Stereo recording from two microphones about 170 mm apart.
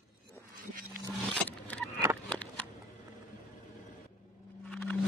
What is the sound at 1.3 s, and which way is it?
Vehicle, 5° left (ahead or behind).